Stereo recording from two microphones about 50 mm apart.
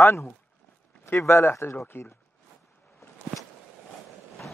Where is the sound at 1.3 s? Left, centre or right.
Left.